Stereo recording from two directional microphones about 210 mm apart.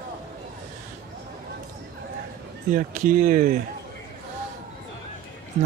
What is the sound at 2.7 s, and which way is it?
Speech, 40° right (ahead or behind).